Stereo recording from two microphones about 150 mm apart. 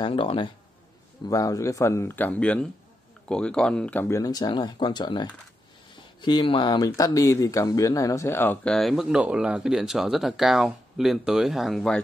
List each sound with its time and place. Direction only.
0.0 s speech: 35° left (ahead or behind)
1.3 s speech: 20° left (ahead or behind)
8.7 s speech: centre (ahead or behind)